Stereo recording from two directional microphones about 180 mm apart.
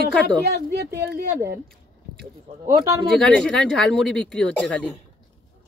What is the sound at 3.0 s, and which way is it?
Speech, 5° left (ahead or behind).